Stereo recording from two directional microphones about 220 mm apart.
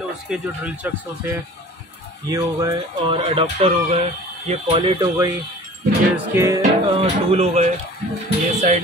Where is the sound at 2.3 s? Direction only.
15° right (ahead or behind).